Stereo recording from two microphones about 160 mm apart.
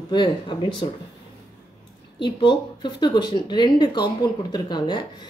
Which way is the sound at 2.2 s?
30° left (ahead or behind).